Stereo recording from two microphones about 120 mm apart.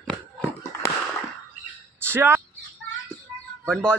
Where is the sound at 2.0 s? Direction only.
20° right (ahead or behind).